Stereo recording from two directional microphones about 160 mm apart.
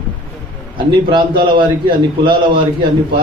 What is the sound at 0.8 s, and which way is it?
A man's voice, 30° right (ahead or behind).